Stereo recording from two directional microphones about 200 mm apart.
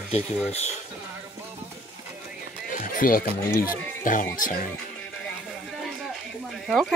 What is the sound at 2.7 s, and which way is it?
Music, 45° left (ahead or behind).